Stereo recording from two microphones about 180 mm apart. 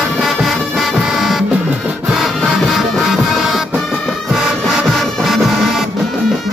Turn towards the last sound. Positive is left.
turn(degrees=0)  # may be behind; listen again after turning